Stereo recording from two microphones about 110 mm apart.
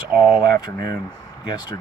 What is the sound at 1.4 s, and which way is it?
Speech, 40° left (ahead or behind).